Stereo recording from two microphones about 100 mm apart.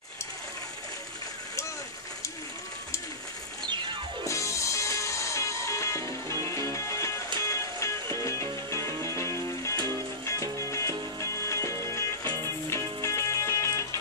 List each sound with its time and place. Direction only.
3.6 s music: 55° right (ahead or behind)
4.3 s music: 30° left (ahead or behind)